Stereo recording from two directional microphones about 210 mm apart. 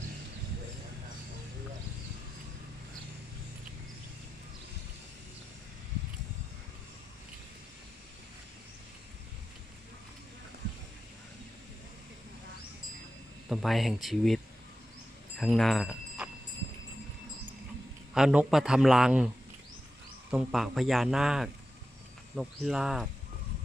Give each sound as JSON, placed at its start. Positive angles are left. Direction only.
{"t": 13.5, "sound": "a man's voice", "side_deg": 0}
{"t": 18.1, "sound": "a man's voice", "side_deg": -5}